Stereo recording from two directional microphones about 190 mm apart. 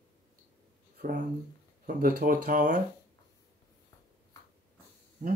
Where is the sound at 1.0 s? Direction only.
45° right (ahead or behind).